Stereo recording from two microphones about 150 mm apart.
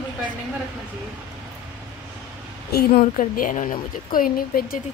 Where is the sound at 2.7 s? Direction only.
60° left (ahead or behind).